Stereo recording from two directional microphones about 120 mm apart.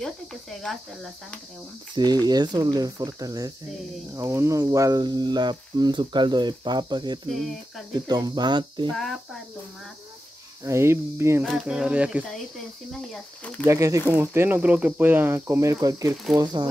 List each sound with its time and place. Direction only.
0.0 s speech: centre (ahead or behind)
2.2 s speech: 35° right (ahead or behind)
7.2 s speech: centre (ahead or behind)
7.9 s speech: 35° right (ahead or behind)
8.9 s speech: centre (ahead or behind)
10.6 s speech: 25° right (ahead or behind)
11.4 s speech: 5° right (ahead or behind)
13.1 s speech: 10° left (ahead or behind)
13.7 s speech: 25° right (ahead or behind)